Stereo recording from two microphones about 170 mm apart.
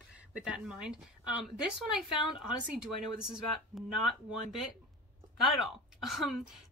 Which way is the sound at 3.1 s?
5° right (ahead or behind).